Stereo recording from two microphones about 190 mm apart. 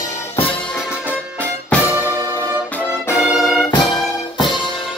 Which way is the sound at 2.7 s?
15° left (ahead or behind).